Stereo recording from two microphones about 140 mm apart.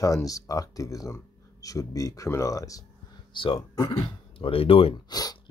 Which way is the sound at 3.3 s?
35° left (ahead or behind).